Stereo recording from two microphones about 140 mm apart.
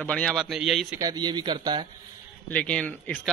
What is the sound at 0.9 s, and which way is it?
Speech, 25° right (ahead or behind).